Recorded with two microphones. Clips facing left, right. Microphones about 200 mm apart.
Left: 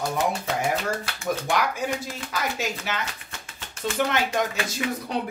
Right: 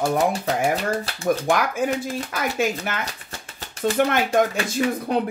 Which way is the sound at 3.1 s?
40° right (ahead or behind).